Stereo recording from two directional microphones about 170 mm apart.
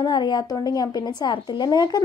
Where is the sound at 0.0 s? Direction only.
25° left (ahead or behind).